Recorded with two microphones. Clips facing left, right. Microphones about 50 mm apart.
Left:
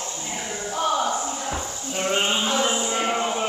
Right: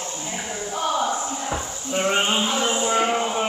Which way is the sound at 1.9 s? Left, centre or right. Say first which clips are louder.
Right 2 dB; centre.